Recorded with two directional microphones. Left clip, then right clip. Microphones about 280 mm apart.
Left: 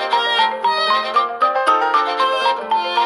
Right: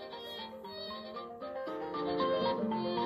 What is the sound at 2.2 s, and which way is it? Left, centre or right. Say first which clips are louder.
Music: left 15 dB; left.